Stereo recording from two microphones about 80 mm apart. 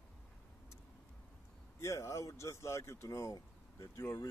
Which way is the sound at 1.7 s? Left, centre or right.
Left.